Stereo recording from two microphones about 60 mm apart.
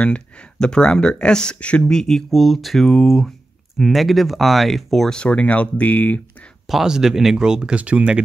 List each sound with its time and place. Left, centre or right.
0.0 s speech: centre
5.1 s speech: centre
6.7 s speech: centre